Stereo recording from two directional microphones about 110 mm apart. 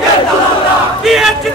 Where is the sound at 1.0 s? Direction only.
5° right (ahead or behind).